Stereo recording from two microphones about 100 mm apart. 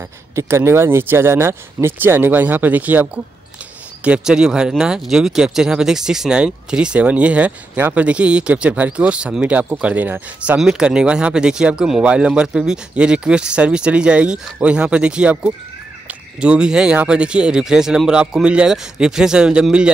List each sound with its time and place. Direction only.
0.4 s speech: 25° right (ahead or behind)
10.6 s speech: 5° right (ahead or behind)